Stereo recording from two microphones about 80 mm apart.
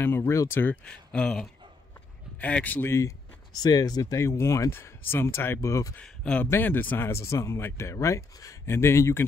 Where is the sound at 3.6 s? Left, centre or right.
Left.